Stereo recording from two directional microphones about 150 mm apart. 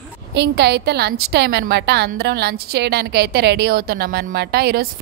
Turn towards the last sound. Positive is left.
turn(degrees=-90)